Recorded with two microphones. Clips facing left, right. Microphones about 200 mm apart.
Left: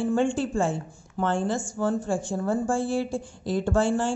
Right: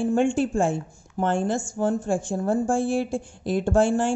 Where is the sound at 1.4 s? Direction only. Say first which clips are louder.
Right 2 dB; 50° right (ahead or behind).